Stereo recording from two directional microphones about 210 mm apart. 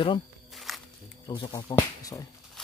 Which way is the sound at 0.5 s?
Centre (ahead or behind).